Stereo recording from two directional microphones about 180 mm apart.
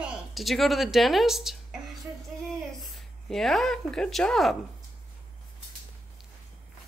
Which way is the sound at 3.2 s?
Centre (ahead or behind).